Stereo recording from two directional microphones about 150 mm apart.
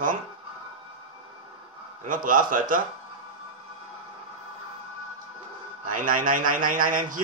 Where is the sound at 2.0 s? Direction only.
65° right (ahead or behind).